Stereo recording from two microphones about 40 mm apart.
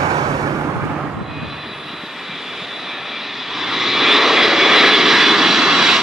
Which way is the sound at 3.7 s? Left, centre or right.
Centre.